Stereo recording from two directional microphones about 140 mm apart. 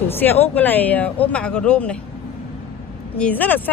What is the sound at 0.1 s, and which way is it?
Speech, 15° left (ahead or behind).